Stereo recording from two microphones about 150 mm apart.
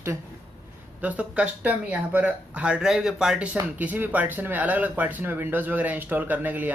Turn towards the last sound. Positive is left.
turn(degrees=-10)  # may be behind; listen again after turning